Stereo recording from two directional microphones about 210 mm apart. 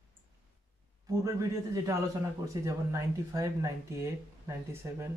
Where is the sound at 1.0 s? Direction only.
15° right (ahead or behind).